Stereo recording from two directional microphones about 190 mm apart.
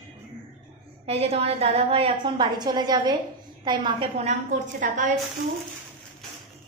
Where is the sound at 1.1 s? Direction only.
30° right (ahead or behind).